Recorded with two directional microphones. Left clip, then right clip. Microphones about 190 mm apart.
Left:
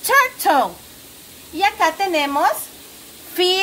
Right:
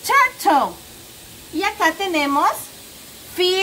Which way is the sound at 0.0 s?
50° left (ahead or behind).